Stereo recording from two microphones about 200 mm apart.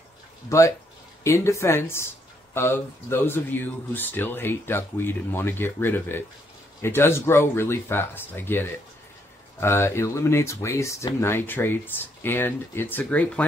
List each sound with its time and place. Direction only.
0.5 s speech: 15° left (ahead or behind)